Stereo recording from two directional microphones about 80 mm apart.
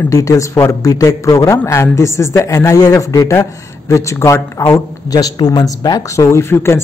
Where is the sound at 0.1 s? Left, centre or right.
Left.